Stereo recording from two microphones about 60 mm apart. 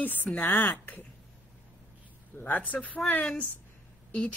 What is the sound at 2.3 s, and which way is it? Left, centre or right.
Speech, left.